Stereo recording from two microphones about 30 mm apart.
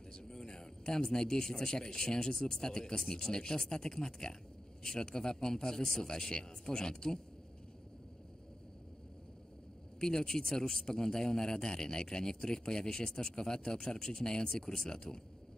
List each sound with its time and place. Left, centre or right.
0.1 s a man's voice: left
9.9 s speech: left